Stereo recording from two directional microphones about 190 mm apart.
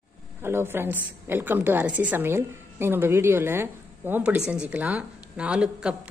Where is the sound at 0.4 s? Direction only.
15° right (ahead or behind).